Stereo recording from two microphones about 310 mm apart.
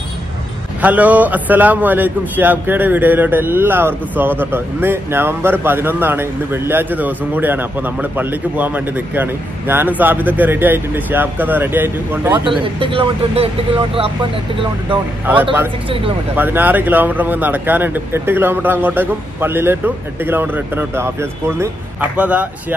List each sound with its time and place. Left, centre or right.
0.7 s a man's voice: centre
15.4 s a man's voice: centre